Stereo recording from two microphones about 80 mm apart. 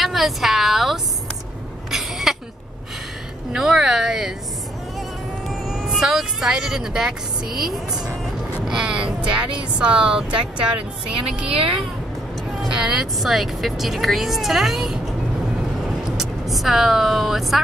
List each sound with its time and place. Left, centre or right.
0.0 s a woman's voice: centre
1.9 s a sound: centre
3.5 s speech: centre
5.5 s speech: centre
8.6 s speech: centre
16.2 s speech: centre